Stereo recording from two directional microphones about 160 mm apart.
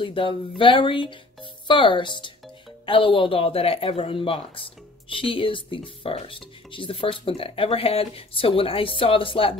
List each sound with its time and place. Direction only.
0.0 s speech: 30° left (ahead or behind)